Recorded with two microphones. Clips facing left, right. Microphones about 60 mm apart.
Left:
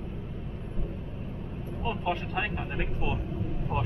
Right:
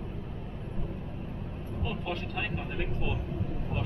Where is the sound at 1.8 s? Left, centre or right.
Left.